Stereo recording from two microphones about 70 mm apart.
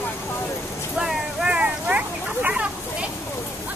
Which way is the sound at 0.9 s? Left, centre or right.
Centre.